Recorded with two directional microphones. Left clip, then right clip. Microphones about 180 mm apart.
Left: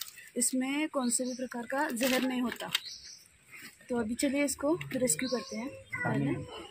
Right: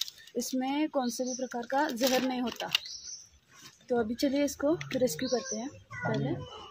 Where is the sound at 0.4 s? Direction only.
35° right (ahead or behind).